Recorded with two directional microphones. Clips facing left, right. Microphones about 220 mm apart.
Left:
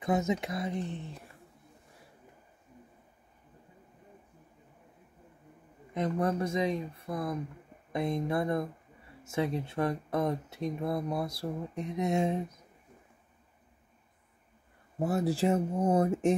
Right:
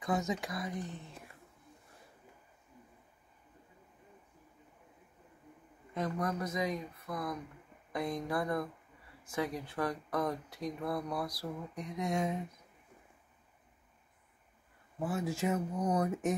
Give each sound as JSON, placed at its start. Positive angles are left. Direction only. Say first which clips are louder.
{"t": 0.0, "sound": "speech", "louder": "left 5 dB", "side_deg": 20}
{"t": 5.9, "sound": "speech", "louder": "left 5 dB", "side_deg": 25}
{"t": 15.0, "sound": "speech", "louder": "left 6 dB", "side_deg": 40}